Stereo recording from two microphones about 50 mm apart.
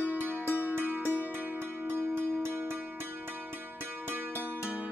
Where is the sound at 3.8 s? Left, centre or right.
Right.